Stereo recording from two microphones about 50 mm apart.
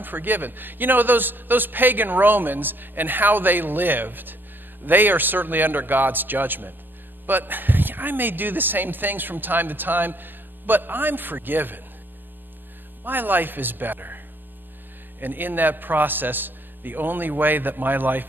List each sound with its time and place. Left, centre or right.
0.0 s speech: right
13.0 s speech: right